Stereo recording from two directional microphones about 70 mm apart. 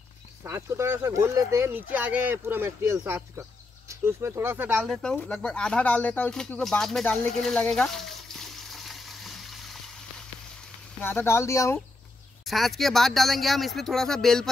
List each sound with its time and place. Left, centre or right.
0.4 s speech: right
1.6 s speech: right
4.8 s speech: centre
5.3 s speech: centre
6.7 s speech: centre
7.3 s a sound: centre
11.0 s speech: left
12.4 s speech: centre